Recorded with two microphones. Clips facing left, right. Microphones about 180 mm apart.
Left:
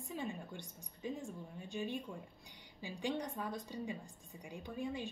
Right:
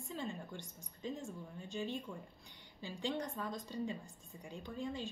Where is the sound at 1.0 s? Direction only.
15° left (ahead or behind).